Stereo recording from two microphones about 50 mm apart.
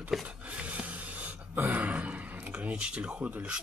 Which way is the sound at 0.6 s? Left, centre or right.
Right.